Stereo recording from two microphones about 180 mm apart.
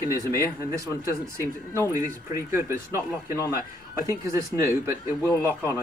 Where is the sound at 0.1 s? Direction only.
20° right (ahead or behind).